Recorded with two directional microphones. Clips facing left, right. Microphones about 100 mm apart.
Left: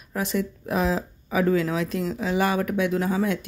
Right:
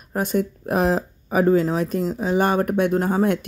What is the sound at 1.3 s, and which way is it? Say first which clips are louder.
Speech: right 4 dB; 40° right (ahead or behind).